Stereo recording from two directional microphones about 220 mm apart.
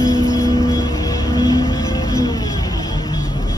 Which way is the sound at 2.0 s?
15° left (ahead or behind).